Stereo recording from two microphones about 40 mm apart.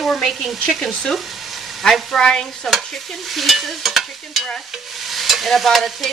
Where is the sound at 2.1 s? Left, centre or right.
Centre.